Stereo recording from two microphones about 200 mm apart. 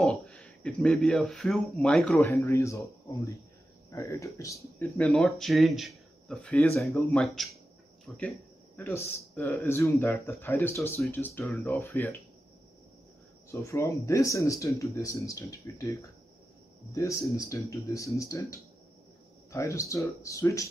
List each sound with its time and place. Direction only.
0.0 s speech: 5° left (ahead or behind)
3.9 s speech: 15° left (ahead or behind)
13.5 s speech: 15° left (ahead or behind)